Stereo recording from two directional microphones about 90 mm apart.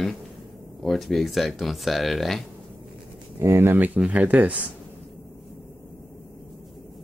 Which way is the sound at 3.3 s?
30° right (ahead or behind).